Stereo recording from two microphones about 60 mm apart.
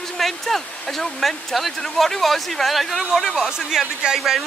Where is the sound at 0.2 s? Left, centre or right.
Centre.